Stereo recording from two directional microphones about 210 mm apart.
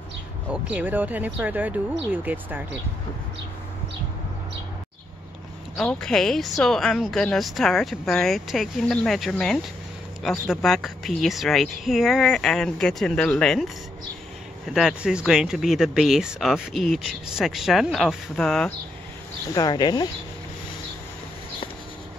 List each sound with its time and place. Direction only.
0.5 s speech: 5° right (ahead or behind)
5.8 s speech: 5° left (ahead or behind)
14.7 s speech: centre (ahead or behind)
19.5 s speech: 20° left (ahead or behind)